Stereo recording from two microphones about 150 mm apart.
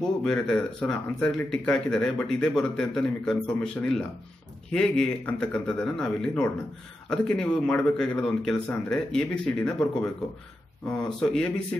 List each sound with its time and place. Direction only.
0.2 s speech: 5° left (ahead or behind)
10.9 s speech: 5° left (ahead or behind)